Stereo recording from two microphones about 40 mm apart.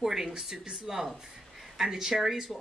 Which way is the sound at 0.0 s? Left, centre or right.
Centre.